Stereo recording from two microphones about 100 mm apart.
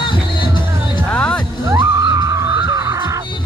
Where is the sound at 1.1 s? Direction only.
10° left (ahead or behind).